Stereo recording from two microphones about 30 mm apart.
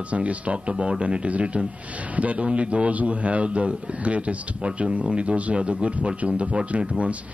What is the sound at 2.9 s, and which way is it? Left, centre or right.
Speech, right.